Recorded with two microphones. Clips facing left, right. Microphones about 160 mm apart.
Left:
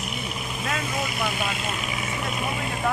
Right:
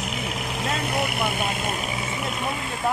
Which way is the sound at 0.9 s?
60° right (ahead or behind).